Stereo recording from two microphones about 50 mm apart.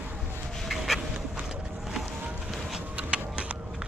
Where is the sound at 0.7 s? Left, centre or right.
Centre.